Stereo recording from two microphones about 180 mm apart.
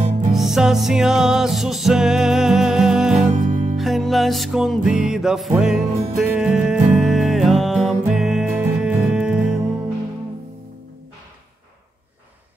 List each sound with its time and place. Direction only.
0.3 s music: centre (ahead or behind)
3.2 s music: 45° right (ahead or behind)
3.7 s music: centre (ahead or behind)